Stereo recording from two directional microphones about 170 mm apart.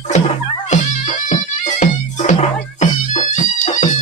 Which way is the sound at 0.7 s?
45° left (ahead or behind).